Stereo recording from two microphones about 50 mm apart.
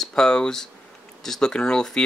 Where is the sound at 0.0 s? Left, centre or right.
Centre.